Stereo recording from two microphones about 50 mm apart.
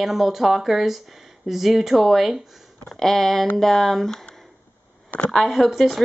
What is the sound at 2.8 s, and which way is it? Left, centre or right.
Speech, centre.